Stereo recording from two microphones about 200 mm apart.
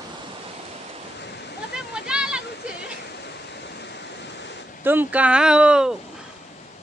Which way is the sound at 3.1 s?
60° left (ahead or behind).